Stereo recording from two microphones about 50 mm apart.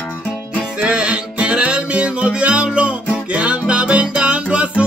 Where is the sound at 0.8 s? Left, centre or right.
Centre.